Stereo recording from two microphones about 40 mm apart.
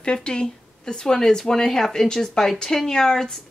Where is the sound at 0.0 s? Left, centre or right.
Left.